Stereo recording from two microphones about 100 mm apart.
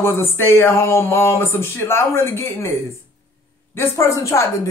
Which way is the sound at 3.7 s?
25° left (ahead or behind).